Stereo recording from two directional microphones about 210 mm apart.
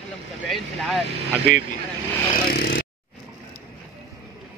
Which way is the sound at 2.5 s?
45° left (ahead or behind).